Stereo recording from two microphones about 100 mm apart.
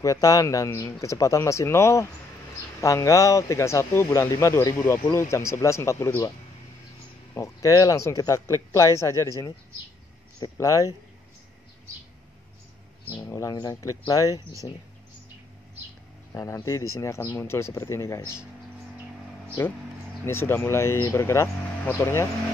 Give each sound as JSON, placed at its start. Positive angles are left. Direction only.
{"t": 0.0, "sound": "speech", "side_deg": 35}
{"t": 7.3, "sound": "speech", "side_deg": 30}
{"t": 10.6, "sound": "speech", "side_deg": 30}
{"t": 13.2, "sound": "speech", "side_deg": 35}
{"t": 16.3, "sound": "speech", "side_deg": 35}
{"t": 20.2, "sound": "speech", "side_deg": 25}